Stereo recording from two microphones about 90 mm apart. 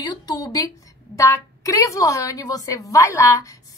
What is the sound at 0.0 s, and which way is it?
A woman's voice, 45° left (ahead or behind).